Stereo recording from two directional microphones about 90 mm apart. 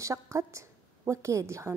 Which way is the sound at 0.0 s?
35° right (ahead or behind).